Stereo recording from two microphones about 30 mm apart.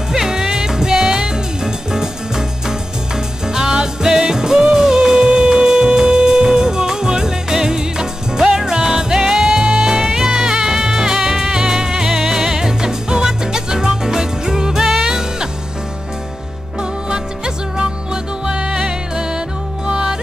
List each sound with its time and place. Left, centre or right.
0.1 s music: centre
3.4 s music: right
17.7 s music: right